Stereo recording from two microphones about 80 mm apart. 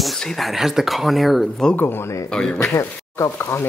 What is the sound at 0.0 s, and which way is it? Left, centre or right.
Speech, centre.